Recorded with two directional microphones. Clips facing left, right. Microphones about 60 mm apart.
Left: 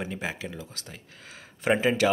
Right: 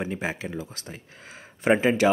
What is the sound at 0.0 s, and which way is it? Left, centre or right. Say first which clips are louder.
Speech: right 3 dB; centre.